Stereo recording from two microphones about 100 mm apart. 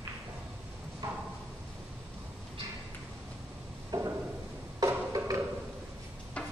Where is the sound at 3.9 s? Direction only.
40° right (ahead or behind).